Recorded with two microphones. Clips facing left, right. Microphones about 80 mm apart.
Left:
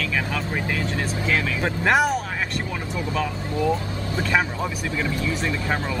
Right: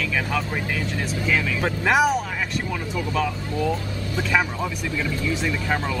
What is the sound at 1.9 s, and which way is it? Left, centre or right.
Speech, centre.